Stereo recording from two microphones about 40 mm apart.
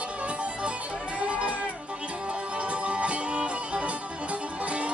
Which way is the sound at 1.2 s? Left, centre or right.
Right.